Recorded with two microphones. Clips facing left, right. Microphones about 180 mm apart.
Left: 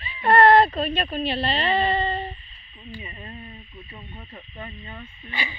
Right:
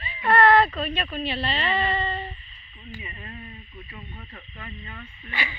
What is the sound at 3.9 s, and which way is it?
Speech, 20° left (ahead or behind).